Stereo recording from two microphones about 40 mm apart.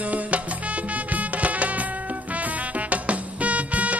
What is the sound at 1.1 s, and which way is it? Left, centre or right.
Music, right.